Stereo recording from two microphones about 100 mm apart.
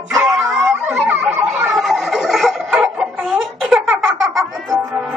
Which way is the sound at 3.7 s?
5° right (ahead or behind).